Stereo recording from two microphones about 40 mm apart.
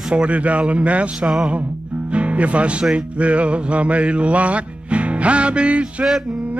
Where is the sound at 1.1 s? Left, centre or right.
Centre.